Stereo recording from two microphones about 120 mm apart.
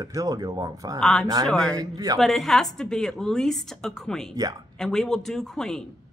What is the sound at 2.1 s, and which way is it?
A woman's voice, centre (ahead or behind).